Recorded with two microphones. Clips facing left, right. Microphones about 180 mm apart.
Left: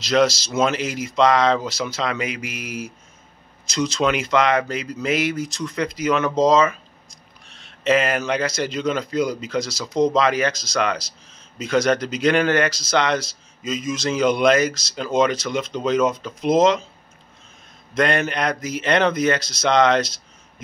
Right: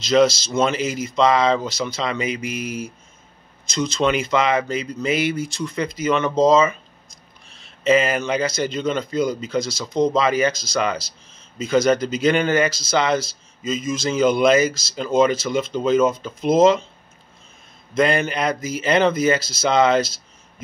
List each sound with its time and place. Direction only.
0.0 s speech: centre (ahead or behind)
17.9 s speech: centre (ahead or behind)